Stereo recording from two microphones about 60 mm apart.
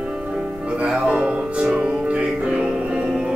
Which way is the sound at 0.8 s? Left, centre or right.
Centre.